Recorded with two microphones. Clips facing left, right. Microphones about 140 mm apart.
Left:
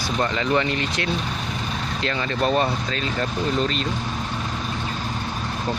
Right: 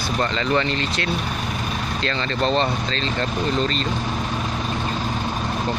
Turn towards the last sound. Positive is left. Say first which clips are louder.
# right 1 dB
turn(degrees=5)  # may be behind; listen again after turning